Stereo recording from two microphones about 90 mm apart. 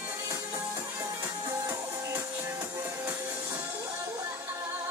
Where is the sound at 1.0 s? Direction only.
45° right (ahead or behind).